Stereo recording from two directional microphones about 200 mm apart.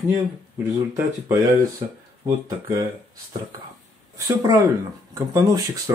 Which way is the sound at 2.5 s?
20° right (ahead or behind).